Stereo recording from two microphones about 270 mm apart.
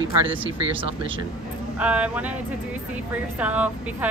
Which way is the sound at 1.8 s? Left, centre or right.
Centre.